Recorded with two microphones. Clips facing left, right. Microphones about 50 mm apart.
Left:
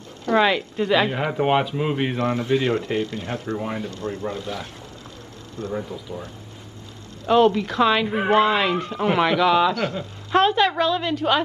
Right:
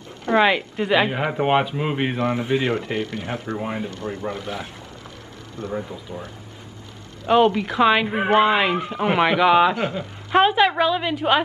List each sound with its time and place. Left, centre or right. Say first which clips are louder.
0.3 s speech: right 1 dB; right
3.5 s speech: right 1 dB; centre
4.0 s speech: even; right
5.7 s speech: even; centre
7.2 s speech: even; right